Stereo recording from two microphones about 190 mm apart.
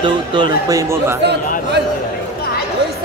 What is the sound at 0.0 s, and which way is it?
Speech, 25° right (ahead or behind).